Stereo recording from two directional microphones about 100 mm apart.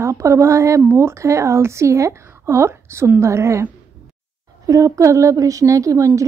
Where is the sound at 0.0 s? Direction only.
30° right (ahead or behind).